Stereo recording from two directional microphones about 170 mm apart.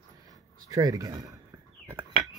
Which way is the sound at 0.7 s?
20° right (ahead or behind).